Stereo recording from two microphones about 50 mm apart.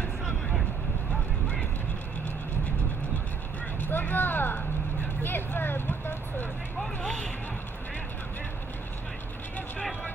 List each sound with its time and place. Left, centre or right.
0.2 s vehicle: centre
3.8 s vehicle: left
7.0 s vehicle: left